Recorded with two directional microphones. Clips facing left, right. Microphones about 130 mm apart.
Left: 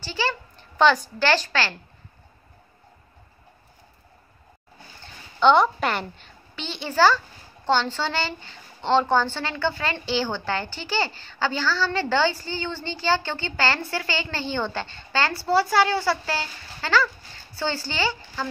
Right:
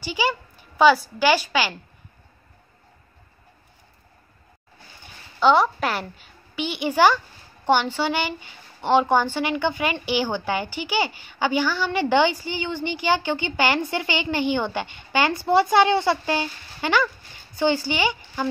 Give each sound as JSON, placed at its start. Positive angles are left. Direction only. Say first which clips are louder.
{"t": 0.0, "sound": "speech", "louder": "right 3 dB", "side_deg": -15}
{"t": 5.0, "sound": "a woman's voice", "louder": "even", "side_deg": -5}